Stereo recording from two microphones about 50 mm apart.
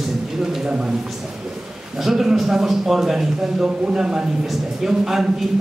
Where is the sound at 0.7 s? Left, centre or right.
Centre.